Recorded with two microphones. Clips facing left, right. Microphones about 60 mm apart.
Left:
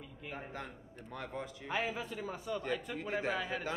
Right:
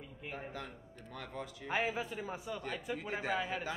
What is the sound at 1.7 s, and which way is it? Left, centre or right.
Speech, centre.